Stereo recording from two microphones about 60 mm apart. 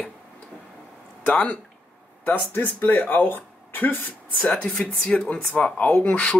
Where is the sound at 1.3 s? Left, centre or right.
Centre.